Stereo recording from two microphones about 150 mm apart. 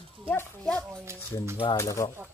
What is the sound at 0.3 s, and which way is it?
Speech, 10° left (ahead or behind).